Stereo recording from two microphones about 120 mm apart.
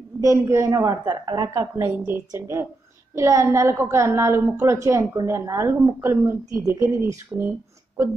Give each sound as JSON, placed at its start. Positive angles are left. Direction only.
{"t": 0.2, "sound": "a woman's voice", "side_deg": -25}
{"t": 1.5, "sound": "a woman's voice", "side_deg": -20}